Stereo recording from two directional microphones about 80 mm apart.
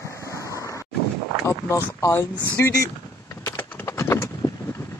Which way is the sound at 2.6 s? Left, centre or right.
Left.